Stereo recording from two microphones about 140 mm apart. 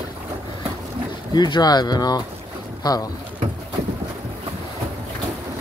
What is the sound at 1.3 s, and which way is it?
Speech, 30° left (ahead or behind).